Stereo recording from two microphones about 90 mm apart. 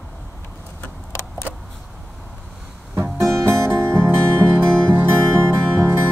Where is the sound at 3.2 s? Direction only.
30° right (ahead or behind).